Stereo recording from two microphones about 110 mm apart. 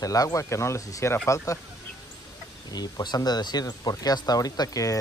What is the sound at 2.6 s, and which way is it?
Speech, 35° left (ahead or behind).